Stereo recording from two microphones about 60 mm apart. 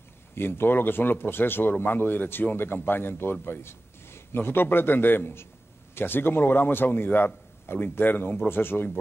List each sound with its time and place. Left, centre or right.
0.3 s a man's voice: left